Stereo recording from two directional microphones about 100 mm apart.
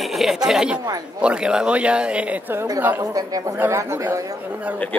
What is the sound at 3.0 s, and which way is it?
Speech, 35° right (ahead or behind).